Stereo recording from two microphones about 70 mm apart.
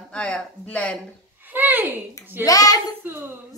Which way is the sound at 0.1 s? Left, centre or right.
Centre.